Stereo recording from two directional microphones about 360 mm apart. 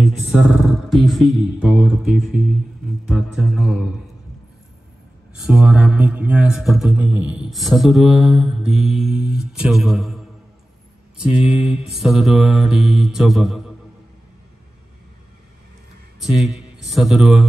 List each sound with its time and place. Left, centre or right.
0.0 s mantra: centre
5.4 s mantra: centre
16.3 s mantra: centre